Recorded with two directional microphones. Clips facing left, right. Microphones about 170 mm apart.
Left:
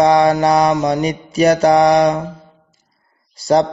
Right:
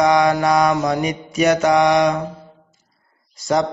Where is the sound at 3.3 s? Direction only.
35° left (ahead or behind).